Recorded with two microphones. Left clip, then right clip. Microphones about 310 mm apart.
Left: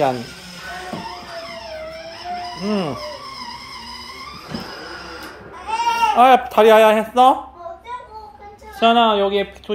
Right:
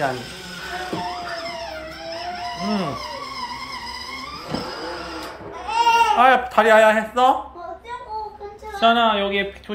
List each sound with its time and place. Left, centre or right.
2.6 s speech: centre
5.7 s speech: centre
8.7 s speech: centre